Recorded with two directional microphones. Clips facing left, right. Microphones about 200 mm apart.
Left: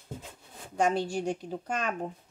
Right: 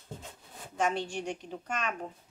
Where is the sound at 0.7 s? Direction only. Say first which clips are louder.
Left 4 dB; 40° left (ahead or behind).